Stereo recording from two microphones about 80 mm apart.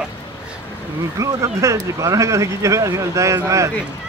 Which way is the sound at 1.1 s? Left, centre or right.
Right.